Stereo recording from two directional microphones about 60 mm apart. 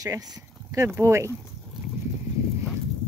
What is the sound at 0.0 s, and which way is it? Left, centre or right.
Speech, right.